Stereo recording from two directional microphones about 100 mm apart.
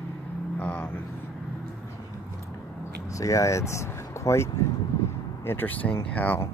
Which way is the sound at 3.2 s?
30° left (ahead or behind).